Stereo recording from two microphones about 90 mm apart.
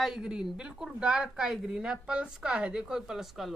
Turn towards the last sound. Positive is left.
turn(degrees=-5)  # may be behind; listen again after turning